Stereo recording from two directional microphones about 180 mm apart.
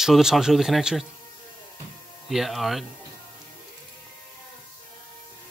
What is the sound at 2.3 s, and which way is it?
Speech, centre (ahead or behind).